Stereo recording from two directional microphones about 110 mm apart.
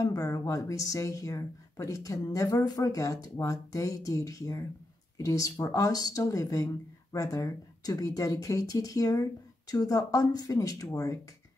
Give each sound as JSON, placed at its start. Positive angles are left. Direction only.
{"t": 0.0, "sound": "speech", "side_deg": 35}